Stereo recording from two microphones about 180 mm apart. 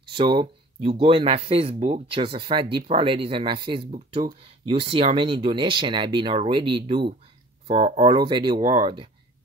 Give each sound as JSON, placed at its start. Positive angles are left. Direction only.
{"t": 0.0, "sound": "speech", "side_deg": -25}